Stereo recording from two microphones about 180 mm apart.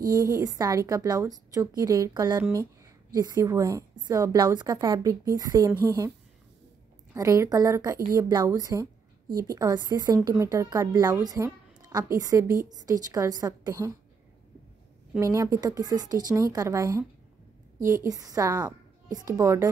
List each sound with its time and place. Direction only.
0.1 s a woman's voice: 20° right (ahead or behind)
7.2 s a woman's voice: 15° right (ahead or behind)
15.1 s a woman's voice: 15° right (ahead or behind)
18.0 s a woman's voice: 20° right (ahead or behind)